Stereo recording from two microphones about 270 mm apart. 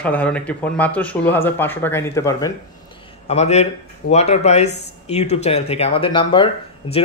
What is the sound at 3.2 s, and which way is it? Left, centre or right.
Speech, left.